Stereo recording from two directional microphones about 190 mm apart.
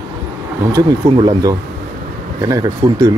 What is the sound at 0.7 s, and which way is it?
Speech, 20° right (ahead or behind).